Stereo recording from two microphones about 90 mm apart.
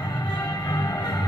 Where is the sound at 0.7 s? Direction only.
45° left (ahead or behind).